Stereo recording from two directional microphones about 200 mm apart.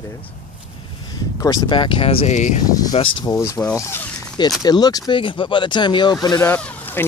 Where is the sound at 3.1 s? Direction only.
20° left (ahead or behind).